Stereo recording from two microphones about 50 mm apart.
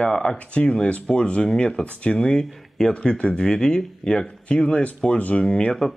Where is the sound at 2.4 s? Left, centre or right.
Centre.